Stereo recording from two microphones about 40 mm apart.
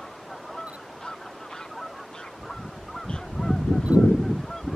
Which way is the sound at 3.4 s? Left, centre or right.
Centre.